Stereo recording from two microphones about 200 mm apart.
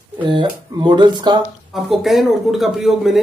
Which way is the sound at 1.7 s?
Centre (ahead or behind).